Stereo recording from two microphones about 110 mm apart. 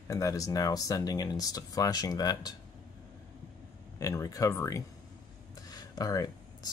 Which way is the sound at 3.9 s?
30° left (ahead or behind).